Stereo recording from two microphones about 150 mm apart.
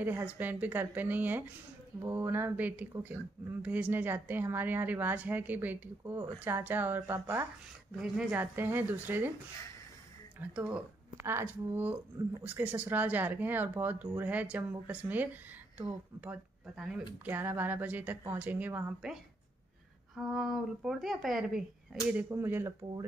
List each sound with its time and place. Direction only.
0.0 s a woman's voice: 10° right (ahead or behind)
10.5 s a woman's voice: 5° right (ahead or behind)
20.2 s a woman's voice: centre (ahead or behind)
22.1 s a woman's voice: 15° right (ahead or behind)